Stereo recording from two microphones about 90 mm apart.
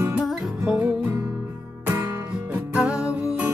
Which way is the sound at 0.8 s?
20° right (ahead or behind).